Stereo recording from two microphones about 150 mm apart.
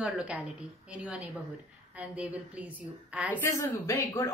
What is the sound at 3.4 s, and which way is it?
Speech, 20° left (ahead or behind).